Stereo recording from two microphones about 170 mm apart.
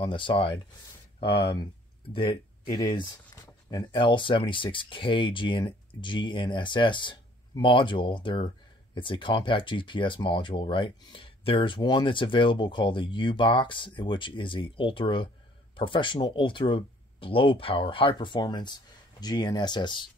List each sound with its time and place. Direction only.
0.0 s speech: 30° left (ahead or behind)
3.7 s speech: 30° left (ahead or behind)